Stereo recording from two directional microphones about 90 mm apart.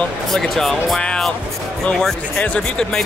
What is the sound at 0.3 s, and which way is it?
Speech, 5° left (ahead or behind).